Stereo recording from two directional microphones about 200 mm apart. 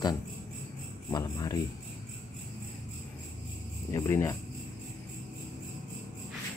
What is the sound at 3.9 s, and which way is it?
Speech, 15° left (ahead or behind).